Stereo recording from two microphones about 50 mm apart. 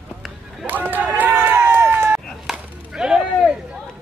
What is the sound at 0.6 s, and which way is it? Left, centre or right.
Run, right.